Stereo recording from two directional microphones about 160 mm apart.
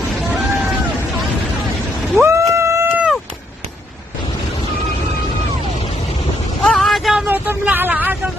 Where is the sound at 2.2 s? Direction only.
20° right (ahead or behind).